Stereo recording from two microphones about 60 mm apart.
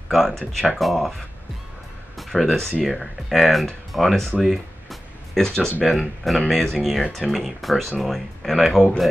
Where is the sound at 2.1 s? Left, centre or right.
Centre.